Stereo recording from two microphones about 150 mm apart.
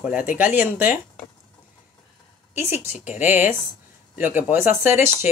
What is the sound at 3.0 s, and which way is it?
Speech, 10° right (ahead or behind).